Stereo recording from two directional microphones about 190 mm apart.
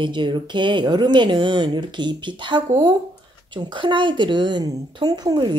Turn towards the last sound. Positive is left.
turn(degrees=-25)  # may be behind; listen again after turning